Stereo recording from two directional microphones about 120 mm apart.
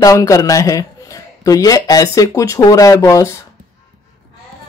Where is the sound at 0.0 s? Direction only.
30° left (ahead or behind).